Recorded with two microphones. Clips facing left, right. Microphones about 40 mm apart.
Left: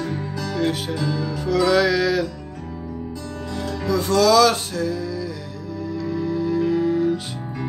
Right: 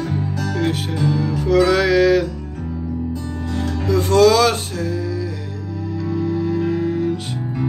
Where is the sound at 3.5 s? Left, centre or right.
Right.